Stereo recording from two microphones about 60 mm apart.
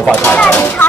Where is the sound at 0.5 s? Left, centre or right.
Left.